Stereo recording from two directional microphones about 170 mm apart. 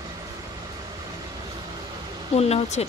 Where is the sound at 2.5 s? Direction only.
40° left (ahead or behind).